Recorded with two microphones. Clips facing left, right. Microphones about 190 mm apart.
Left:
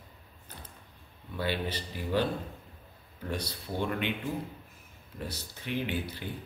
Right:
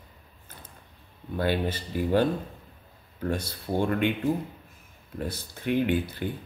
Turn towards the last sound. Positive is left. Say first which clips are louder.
# right 8 dB
turn(degrees=-50)  # may be behind; listen again after turning